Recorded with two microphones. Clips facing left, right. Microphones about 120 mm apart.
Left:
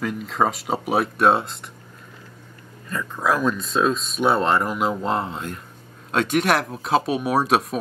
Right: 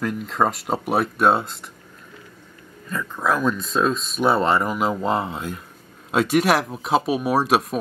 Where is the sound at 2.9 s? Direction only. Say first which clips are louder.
Even; centre (ahead or behind).